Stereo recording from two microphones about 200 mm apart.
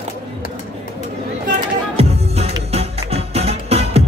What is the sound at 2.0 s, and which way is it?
Music, 30° right (ahead or behind).